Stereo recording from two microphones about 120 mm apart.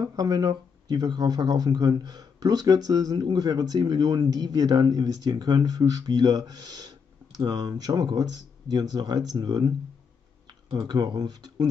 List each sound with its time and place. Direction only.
0.0 s speech: 30° right (ahead or behind)